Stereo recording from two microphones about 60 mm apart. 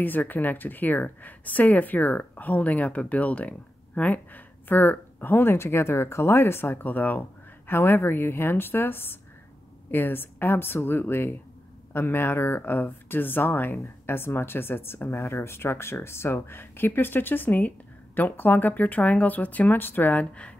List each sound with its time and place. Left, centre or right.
0.0 s speech: left